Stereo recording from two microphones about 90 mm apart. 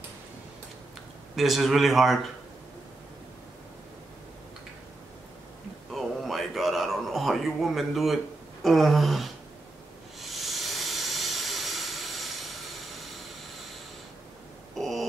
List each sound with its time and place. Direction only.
1.3 s a man's voice: centre (ahead or behind)
5.9 s a sound: centre (ahead or behind)
8.6 s gasp: centre (ahead or behind)
10.2 s hiss: centre (ahead or behind)
14.8 s owl: centre (ahead or behind)